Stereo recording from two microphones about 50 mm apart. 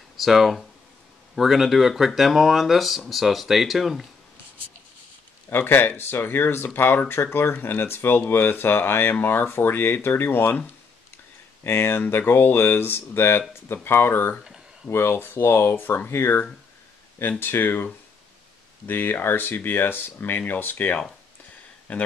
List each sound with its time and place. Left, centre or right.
0.2 s speech: centre
5.5 s speech: left
11.6 s speech: left
18.9 s speech: left